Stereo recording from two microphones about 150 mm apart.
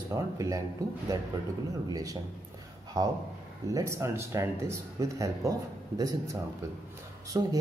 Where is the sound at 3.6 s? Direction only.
20° right (ahead or behind).